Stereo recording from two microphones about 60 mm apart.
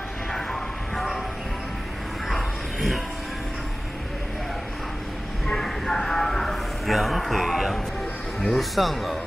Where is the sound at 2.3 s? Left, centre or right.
Centre.